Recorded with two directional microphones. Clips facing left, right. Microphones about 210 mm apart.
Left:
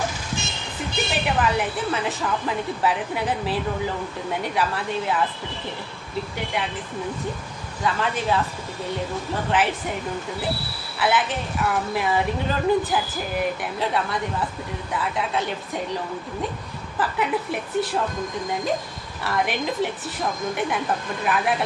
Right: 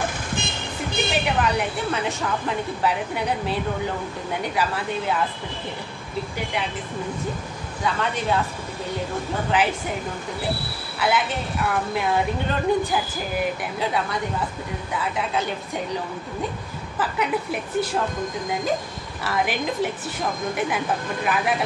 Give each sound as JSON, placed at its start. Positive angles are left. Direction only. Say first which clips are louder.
{"t": 0.4, "sound": "vehicle", "louder": "right 3 dB", "side_deg": -55}
{"t": 1.1, "sound": "a woman's voice", "louder": "left 1 dB", "side_deg": 0}
{"t": 7.8, "sound": "a woman's voice", "louder": "left 1 dB", "side_deg": 0}
{"t": 11.0, "sound": "a woman's voice", "louder": "even", "side_deg": 0}
{"t": 17.0, "sound": "a woman's voice", "louder": "even", "side_deg": 0}
{"t": 19.2, "sound": "a woman's voice", "louder": "even", "side_deg": 0}